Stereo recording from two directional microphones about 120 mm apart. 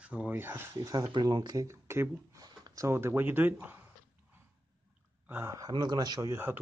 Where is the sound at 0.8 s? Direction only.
30° right (ahead or behind); by 3.8 s 15° right (ahead or behind).